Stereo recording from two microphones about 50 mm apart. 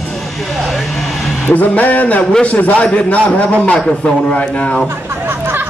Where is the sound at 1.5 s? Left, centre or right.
Left.